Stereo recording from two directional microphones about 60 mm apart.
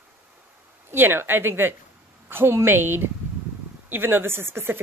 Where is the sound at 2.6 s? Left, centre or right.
Right.